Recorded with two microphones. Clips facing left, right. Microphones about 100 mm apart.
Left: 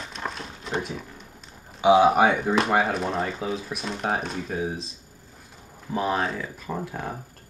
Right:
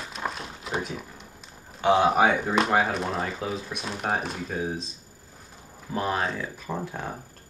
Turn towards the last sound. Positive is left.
turn(degrees=0)  # may be behind; listen again after turning